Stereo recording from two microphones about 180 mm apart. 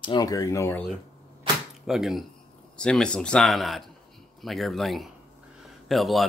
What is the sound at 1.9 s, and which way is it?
Speech, centre (ahead or behind).